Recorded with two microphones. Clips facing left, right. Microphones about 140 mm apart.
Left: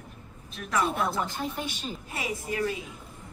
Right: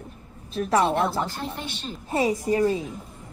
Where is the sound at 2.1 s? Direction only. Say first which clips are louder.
Right 11 dB; 35° right (ahead or behind).